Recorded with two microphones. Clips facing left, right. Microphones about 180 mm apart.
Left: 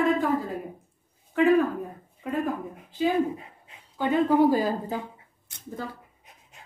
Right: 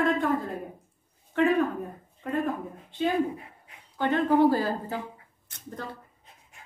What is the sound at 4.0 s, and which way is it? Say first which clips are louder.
Speech: left 1 dB; 10° left (ahead or behind).